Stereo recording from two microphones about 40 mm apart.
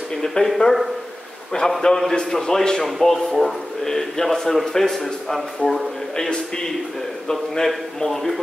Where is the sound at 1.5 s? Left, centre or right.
Left.